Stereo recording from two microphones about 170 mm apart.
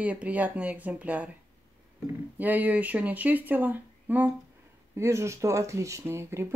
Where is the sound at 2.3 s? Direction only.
10° right (ahead or behind).